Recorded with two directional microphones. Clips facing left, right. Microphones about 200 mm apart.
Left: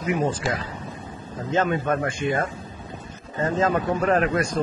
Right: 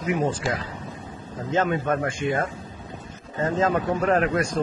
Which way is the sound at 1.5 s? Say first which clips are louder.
Even; 10° right (ahead or behind).